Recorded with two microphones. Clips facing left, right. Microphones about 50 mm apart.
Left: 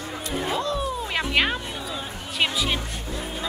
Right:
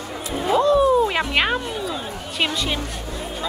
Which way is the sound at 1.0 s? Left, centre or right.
Centre.